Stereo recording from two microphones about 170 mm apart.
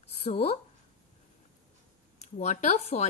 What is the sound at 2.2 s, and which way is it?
Speech, 45° left (ahead or behind).